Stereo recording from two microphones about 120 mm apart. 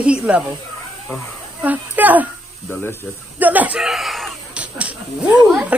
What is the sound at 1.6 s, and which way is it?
Speech, 15° right (ahead or behind).